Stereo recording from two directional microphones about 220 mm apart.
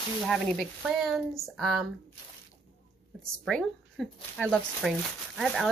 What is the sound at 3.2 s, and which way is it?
Speech, 5° left (ahead or behind).